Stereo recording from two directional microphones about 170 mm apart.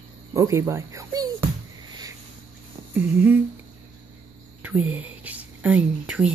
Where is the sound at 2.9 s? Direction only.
10° right (ahead or behind).